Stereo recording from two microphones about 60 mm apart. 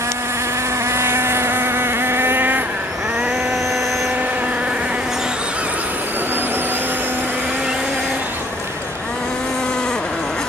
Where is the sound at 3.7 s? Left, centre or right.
Centre.